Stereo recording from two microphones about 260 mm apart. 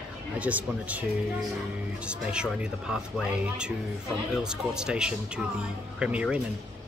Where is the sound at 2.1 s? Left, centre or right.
Centre.